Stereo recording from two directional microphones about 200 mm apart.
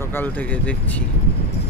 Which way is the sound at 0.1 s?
10° left (ahead or behind).